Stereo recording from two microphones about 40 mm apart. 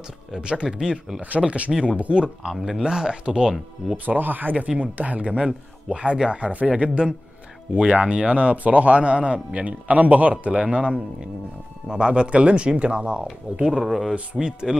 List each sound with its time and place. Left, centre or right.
0.4 s speech: right
0.7 s speech: centre
1.4 s speech: right
2.8 s speech: centre
3.9 s speech: right
13.7 s speech: centre
14.1 s speech: right